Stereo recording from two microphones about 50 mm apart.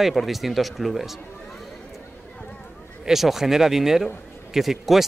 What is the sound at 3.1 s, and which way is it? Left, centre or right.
Speech, centre.